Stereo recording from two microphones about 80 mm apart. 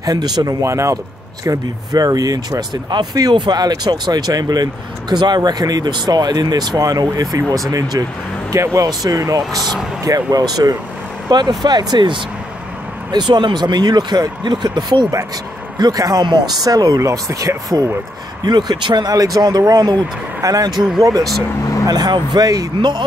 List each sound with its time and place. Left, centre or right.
0.0 s speech: right
2.7 s speech: right
15.8 s speech: right
18.4 s speech: right
19.1 s speech: right
21.8 s speech: right